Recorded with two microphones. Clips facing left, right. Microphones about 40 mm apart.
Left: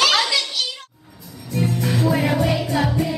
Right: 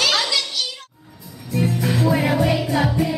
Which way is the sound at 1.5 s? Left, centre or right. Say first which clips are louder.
Right 1 dB; centre.